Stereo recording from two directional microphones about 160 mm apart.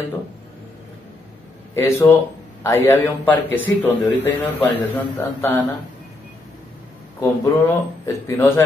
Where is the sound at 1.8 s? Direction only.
15° left (ahead or behind).